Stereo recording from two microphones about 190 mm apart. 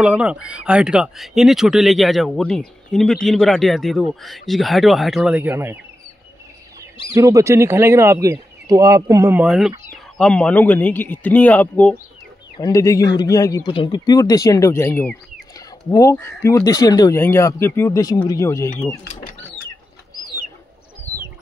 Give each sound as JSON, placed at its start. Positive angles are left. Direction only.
{"t": 0.0, "sound": "speech", "side_deg": -5}
{"t": 7.2, "sound": "speech", "side_deg": -15}
{"t": 19.1, "sound": "bird", "side_deg": 45}